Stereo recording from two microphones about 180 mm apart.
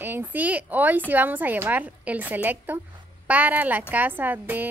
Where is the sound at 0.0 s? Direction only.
10° right (ahead or behind).